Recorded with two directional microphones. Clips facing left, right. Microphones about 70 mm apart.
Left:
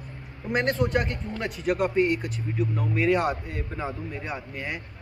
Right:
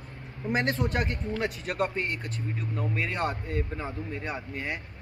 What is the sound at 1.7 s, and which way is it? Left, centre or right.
A man's voice, centre.